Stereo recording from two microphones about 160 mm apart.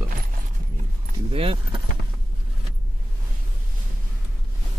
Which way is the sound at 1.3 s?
35° right (ahead or behind).